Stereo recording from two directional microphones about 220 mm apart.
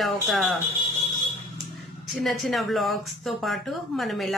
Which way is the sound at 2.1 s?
Centre (ahead or behind).